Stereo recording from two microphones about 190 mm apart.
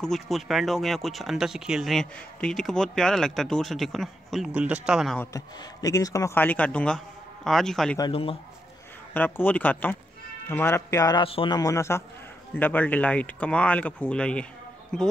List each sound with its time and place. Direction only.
0.0 s speech: centre (ahead or behind)
5.2 s speech: 15° left (ahead or behind); by 8.0 s centre (ahead or behind)
8.0 s a man's voice: 30° left (ahead or behind)
9.1 s speech: 10° left (ahead or behind)